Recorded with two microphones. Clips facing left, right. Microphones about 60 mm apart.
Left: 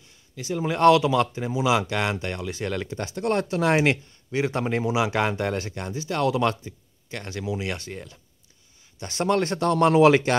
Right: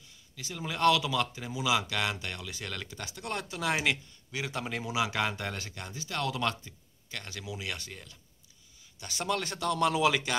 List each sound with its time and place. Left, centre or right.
0.4 s speech: left
2.9 s speech: left
9.0 s speech: left